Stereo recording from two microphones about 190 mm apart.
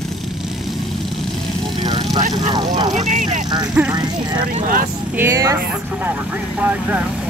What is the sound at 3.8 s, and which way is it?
Speech, 10° right (ahead or behind).